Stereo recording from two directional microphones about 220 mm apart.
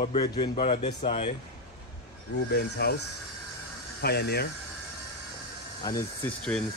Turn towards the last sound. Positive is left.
turn(degrees=5)  # may be behind; listen again after turning